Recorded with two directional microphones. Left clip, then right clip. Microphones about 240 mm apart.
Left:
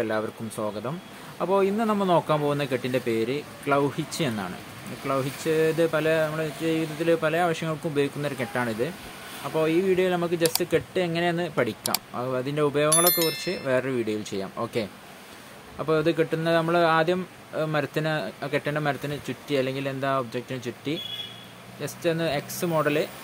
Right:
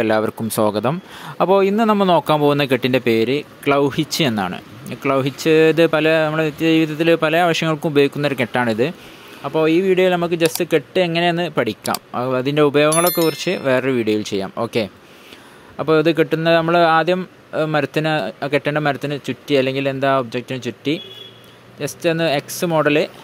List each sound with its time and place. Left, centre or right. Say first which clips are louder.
0.0 s speech: right 10 dB; right